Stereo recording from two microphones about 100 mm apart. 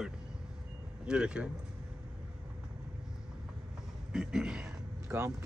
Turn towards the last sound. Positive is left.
turn(degrees=-25)  # may be behind; listen again after turning